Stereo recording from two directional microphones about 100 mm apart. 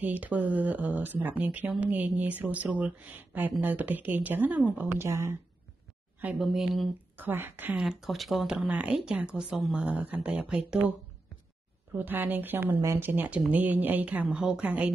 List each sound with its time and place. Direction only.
0.0 s speech: 15° right (ahead or behind)
6.3 s speech: 5° right (ahead or behind)
7.2 s speech: 20° right (ahead or behind)
7.8 s speech: centre (ahead or behind)
8.6 s speech: 15° right (ahead or behind)